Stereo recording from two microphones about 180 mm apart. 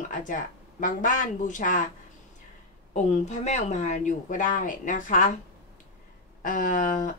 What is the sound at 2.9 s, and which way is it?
A woman's voice, 40° left (ahead or behind).